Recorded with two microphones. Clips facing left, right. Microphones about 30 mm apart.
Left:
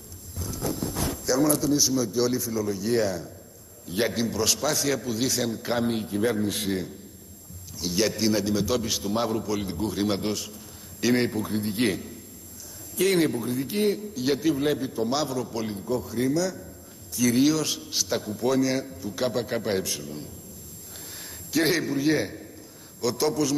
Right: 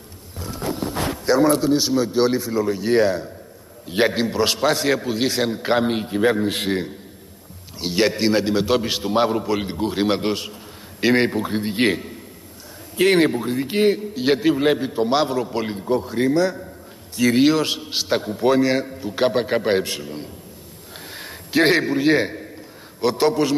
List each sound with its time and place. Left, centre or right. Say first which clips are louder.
0.4 s a man's voice: right 4 dB; right